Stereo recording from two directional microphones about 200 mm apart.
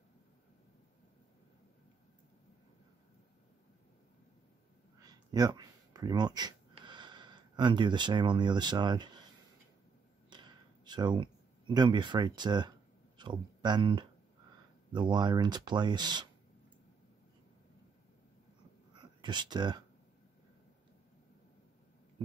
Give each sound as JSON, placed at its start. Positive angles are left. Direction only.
{"t": 5.0, "sound": "a sound", "side_deg": -20}
{"t": 10.3, "sound": "speech", "side_deg": -20}
{"t": 18.9, "sound": "speech", "side_deg": -20}